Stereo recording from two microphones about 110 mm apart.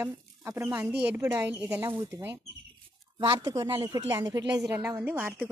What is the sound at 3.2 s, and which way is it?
Speech, 40° right (ahead or behind).